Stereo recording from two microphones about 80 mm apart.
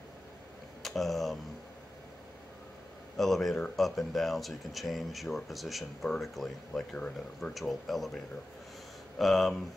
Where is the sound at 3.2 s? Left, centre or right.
Centre.